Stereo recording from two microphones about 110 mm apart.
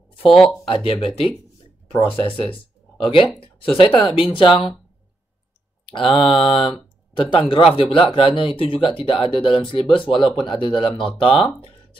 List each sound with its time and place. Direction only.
0.3 s speech: 5° left (ahead or behind)
0.7 s speech: 50° left (ahead or behind)
5.9 s mantra: 60° left (ahead or behind)
7.2 s speech: 50° left (ahead or behind)
11.1 s mantra: 55° left (ahead or behind)